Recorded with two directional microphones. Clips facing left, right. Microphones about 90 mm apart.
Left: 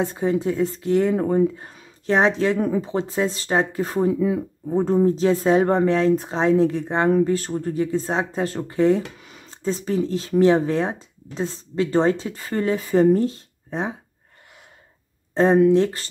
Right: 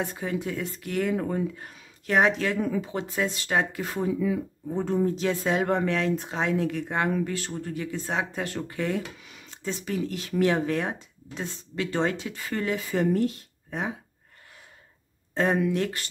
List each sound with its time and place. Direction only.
0.0 s speech: 30° left (ahead or behind)
4.1 s speech: 45° left (ahead or behind)
4.6 s speech: 35° left (ahead or behind)
7.1 s speech: 40° left (ahead or behind)
15.3 s speech: 30° left (ahead or behind)